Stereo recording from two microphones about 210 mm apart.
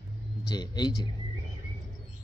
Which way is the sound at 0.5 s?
20° left (ahead or behind).